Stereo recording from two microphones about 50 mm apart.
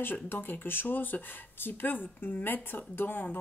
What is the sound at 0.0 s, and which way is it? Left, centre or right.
Speech, left.